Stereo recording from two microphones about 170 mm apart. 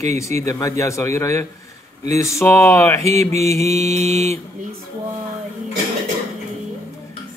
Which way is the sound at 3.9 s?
40° right (ahead or behind).